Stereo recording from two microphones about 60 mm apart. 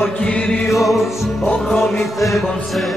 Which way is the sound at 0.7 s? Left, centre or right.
Centre.